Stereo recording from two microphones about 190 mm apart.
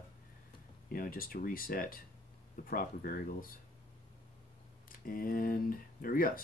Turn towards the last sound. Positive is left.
turn(degrees=50)  # may be behind; listen again after turning